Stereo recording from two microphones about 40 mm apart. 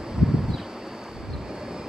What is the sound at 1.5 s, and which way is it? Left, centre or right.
Vehicle, centre.